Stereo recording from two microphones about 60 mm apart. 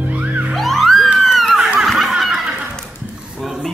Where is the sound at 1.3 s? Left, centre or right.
Centre.